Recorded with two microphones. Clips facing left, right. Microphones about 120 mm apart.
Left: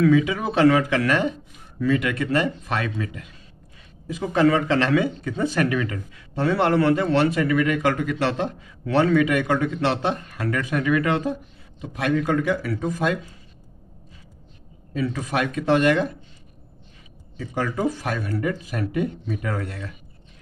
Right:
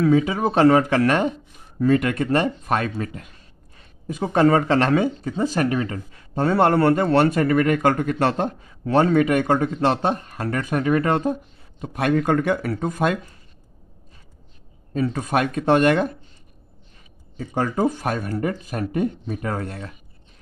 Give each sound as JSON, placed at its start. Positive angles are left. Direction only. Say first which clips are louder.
{"t": 0.0, "sound": "speech", "louder": "right 1 dB", "side_deg": -35}
{"t": 2.6, "sound": "speech", "louder": "right 4 dB", "side_deg": -45}
{"t": 4.1, "sound": "speech", "louder": "right 2 dB", "side_deg": -40}
{"t": 5.0, "sound": "speech", "louder": "right 2 dB", "side_deg": -30}
{"t": 15.0, "sound": "speech", "louder": "right 3 dB", "side_deg": -45}
{"t": 17.4, "sound": "speech", "louder": "right 3 dB", "side_deg": -40}